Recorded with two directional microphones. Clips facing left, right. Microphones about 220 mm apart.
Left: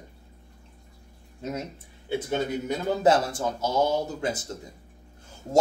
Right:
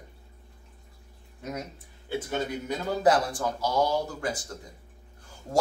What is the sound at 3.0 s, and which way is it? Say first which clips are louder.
A man's voice: left 1 dB; 25° left (ahead or behind).